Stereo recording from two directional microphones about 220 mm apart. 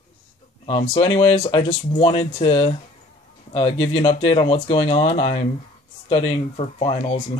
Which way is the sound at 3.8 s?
25° left (ahead or behind).